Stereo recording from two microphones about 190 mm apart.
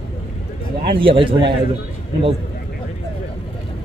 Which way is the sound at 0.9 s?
25° right (ahead or behind).